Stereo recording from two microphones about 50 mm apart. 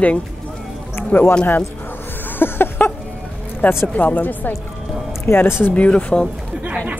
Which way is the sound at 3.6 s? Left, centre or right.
Left.